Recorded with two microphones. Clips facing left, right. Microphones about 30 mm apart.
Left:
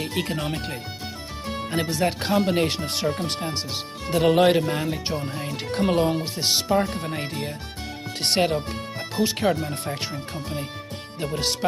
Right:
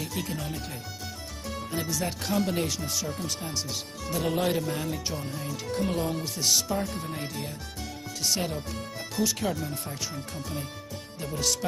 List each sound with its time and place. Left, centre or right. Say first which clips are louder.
0.0 s speech: left 6 dB; left
9.1 s speech: left 6 dB; left
11.1 s speech: left 4 dB; left